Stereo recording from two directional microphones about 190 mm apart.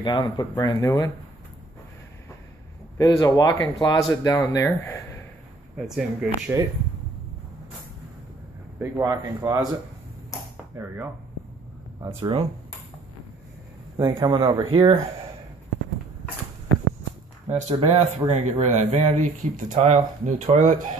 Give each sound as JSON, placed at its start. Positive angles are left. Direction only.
{"t": 0.0, "sound": "speech", "side_deg": 25}
{"t": 3.0, "sound": "speech", "side_deg": 20}
{"t": 5.8, "sound": "speech", "side_deg": -5}
{"t": 8.7, "sound": "speech", "side_deg": -15}
{"t": 12.2, "sound": "speech", "side_deg": -30}
{"t": 13.9, "sound": "speech", "side_deg": -20}
{"t": 17.6, "sound": "speech", "side_deg": -30}